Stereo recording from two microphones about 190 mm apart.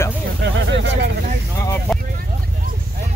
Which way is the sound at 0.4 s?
70° right (ahead or behind).